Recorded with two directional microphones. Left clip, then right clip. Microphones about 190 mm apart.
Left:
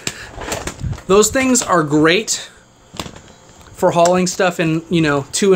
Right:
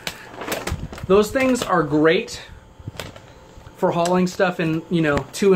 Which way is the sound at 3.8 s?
45° left (ahead or behind).